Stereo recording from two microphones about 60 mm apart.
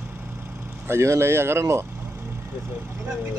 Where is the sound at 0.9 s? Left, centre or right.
Right.